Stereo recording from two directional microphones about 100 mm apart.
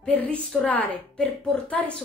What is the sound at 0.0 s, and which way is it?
A woman's voice, 15° left (ahead or behind).